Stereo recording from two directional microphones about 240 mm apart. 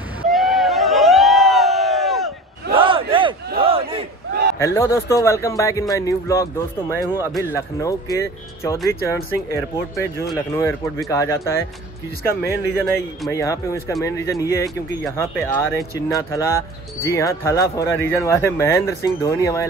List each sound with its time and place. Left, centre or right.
0.3 s crowd: centre
2.7 s battle cry: right
3.6 s a sound: right
4.6 s speech: centre